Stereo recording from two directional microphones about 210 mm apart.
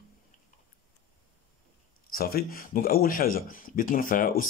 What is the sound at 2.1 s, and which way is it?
Speech, 45° left (ahead or behind).